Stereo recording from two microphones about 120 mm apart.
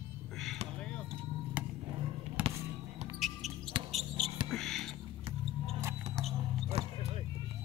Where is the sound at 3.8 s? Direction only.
45° right (ahead or behind).